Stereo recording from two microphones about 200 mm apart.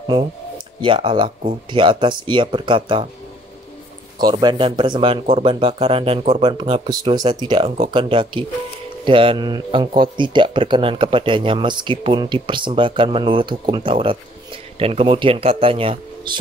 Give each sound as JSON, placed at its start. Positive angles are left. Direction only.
{"t": 0.7, "sound": "speech", "side_deg": -25}
{"t": 4.2, "sound": "speech", "side_deg": -20}